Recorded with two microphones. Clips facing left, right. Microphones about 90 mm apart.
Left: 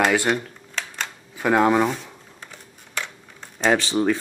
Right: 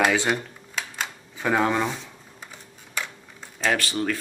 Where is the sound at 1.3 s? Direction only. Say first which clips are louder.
Left 5 dB; 10° left (ahead or behind).